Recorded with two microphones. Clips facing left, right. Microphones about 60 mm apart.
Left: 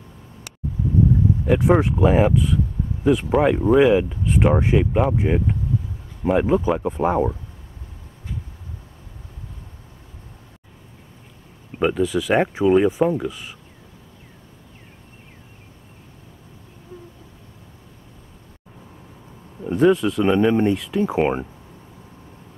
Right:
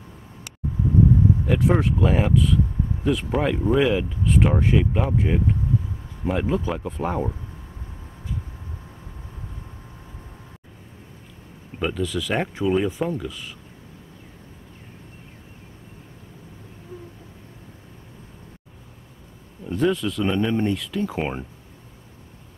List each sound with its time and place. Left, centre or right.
1.5 s speech: centre
11.8 s speech: centre
19.6 s speech: left